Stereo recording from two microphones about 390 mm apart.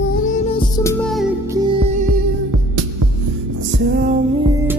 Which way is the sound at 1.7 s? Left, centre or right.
Centre.